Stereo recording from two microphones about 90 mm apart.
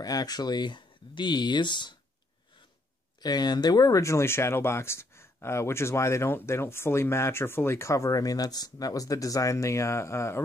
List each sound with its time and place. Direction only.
0.0 s speech: 45° left (ahead or behind)
3.2 s speech: 50° left (ahead or behind); by 10.4 s 30° left (ahead or behind)